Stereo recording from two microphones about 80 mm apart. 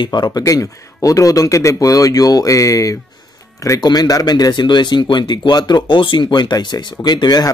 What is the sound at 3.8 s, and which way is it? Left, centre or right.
Speech, left.